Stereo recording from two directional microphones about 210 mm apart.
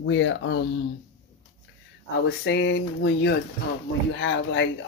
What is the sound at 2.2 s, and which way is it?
Speech, 55° left (ahead or behind).